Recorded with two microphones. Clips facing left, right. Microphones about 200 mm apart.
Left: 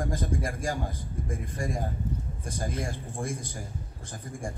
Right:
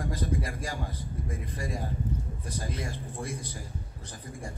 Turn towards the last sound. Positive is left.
turn(degrees=50)  # may be behind; listen again after turning